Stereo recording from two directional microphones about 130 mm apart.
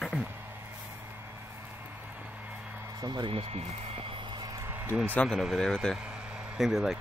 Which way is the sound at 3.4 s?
50° right (ahead or behind).